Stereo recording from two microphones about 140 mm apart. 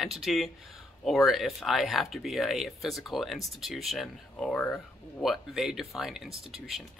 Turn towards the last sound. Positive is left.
turn(degrees=0)  # may be behind; listen again after turning